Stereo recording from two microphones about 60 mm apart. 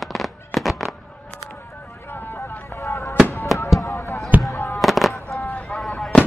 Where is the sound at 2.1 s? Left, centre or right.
Left.